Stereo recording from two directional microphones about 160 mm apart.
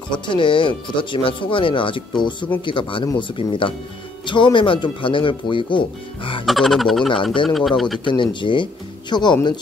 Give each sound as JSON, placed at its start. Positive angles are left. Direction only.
{"t": 0.1, "sound": "speech", "side_deg": 30}
{"t": 6.4, "sound": "speech", "side_deg": 0}
{"t": 8.0, "sound": "speech", "side_deg": 30}